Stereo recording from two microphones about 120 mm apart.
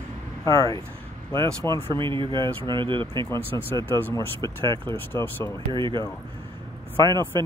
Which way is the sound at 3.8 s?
15° left (ahead or behind).